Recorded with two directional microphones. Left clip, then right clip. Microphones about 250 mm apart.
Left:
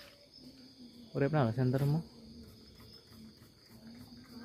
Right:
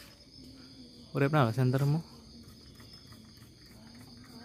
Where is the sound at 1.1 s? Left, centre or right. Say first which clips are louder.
Right 4 dB; right.